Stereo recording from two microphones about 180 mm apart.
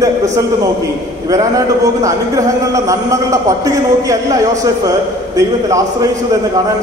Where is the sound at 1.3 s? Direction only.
20° right (ahead or behind).